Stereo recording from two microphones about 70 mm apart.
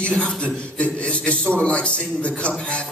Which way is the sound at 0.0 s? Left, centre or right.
Centre.